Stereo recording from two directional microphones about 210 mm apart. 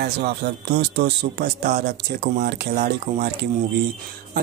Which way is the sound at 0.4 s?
50° right (ahead or behind).